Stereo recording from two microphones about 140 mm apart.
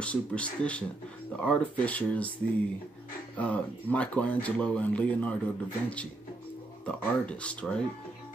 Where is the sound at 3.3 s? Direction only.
10° left (ahead or behind).